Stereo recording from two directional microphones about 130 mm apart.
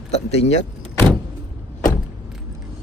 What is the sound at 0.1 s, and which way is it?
Speech, 55° left (ahead or behind).